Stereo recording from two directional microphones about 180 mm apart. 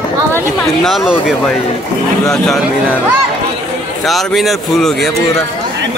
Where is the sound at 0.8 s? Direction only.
Centre (ahead or behind).